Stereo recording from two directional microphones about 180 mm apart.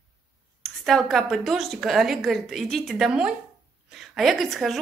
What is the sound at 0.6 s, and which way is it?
A woman's voice, centre (ahead or behind).